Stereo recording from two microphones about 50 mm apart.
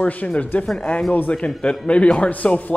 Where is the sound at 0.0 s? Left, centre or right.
Left.